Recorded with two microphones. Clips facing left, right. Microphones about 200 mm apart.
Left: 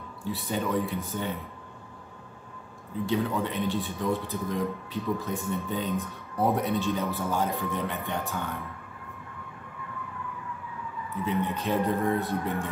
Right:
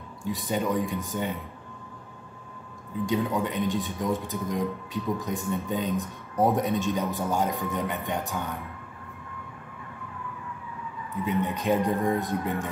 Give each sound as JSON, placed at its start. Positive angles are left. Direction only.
{"t": 0.2, "sound": "speech", "side_deg": -15}
{"t": 3.1, "sound": "speech", "side_deg": -15}
{"t": 11.4, "sound": "speech", "side_deg": -15}